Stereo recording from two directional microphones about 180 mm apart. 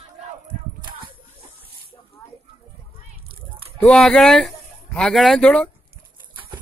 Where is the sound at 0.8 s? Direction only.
25° right (ahead or behind).